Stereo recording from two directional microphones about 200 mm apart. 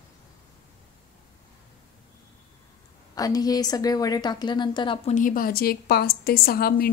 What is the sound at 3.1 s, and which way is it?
A woman's voice, 20° left (ahead or behind).